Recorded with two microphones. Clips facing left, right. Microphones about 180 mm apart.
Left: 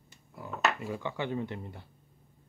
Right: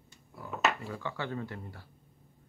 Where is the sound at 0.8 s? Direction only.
15° left (ahead or behind).